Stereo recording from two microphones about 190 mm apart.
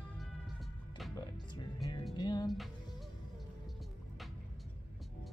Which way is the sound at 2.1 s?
20° left (ahead or behind).